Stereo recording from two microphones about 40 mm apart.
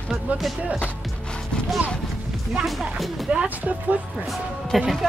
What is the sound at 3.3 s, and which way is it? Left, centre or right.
Speech, right.